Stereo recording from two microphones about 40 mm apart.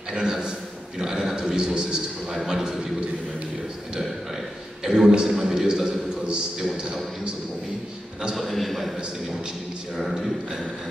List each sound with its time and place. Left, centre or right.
0.1 s a man's voice: centre
4.8 s a man's voice: centre
8.4 s speech: centre